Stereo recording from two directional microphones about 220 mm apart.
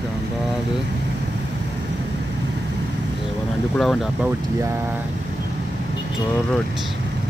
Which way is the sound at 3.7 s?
Centre (ahead or behind).